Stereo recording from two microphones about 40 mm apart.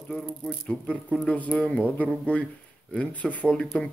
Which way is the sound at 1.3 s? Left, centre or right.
Left.